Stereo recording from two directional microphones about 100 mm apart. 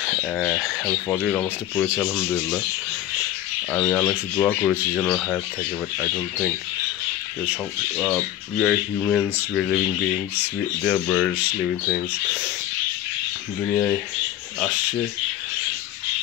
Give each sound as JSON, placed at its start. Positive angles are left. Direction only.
{"t": 0.2, "sound": "speech", "side_deg": 15}
{"t": 3.7, "sound": "speech", "side_deg": 10}
{"t": 8.0, "sound": "speech", "side_deg": 0}